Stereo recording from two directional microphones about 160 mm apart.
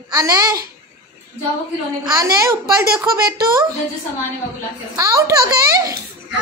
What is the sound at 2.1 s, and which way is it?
A child's voice, 20° right (ahead or behind).